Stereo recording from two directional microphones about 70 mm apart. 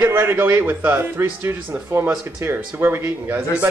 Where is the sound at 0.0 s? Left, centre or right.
Right.